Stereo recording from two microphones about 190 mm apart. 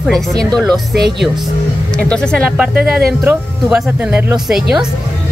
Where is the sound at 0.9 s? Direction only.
60° right (ahead or behind).